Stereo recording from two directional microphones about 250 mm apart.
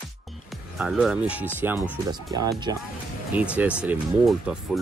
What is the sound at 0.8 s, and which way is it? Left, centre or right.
Speech, centre.